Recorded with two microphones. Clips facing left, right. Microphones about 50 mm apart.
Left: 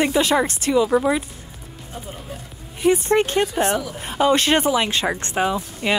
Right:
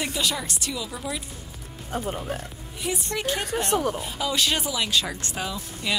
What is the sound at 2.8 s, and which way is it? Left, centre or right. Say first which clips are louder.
Speech: left 11 dB; left.